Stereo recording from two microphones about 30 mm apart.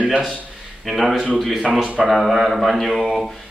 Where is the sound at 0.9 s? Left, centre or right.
Centre.